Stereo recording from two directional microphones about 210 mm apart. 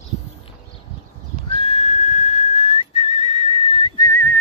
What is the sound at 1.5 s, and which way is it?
Whistling, 25° left (ahead or behind).